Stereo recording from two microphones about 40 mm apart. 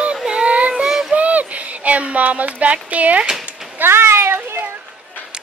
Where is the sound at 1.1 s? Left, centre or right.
Right.